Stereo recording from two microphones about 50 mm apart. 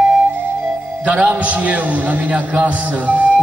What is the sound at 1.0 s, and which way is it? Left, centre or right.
A man's voice, right.